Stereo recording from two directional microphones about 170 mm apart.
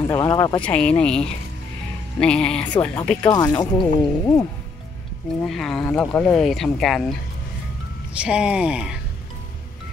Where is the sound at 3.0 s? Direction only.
10° left (ahead or behind).